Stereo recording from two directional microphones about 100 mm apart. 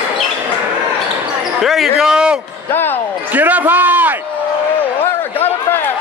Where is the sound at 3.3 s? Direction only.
15° right (ahead or behind).